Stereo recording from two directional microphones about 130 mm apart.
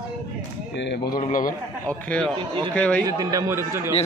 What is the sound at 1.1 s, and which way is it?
Speech, 90° left.